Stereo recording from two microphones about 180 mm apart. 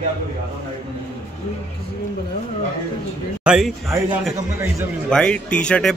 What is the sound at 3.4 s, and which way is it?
Speech, 5° right (ahead or behind).